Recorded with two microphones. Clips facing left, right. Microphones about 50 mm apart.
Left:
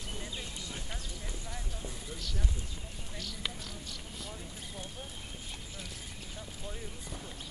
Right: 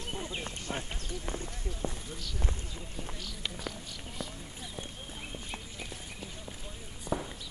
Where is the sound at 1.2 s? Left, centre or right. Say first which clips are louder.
Right 6 dB; right.